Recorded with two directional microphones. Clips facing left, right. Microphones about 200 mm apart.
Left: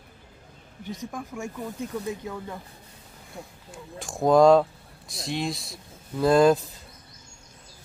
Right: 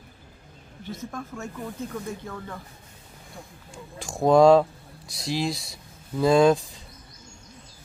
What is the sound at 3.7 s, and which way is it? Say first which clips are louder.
Speech: even; centre (ahead or behind).